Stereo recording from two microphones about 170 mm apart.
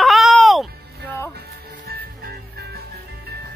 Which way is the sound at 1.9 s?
65° right (ahead or behind).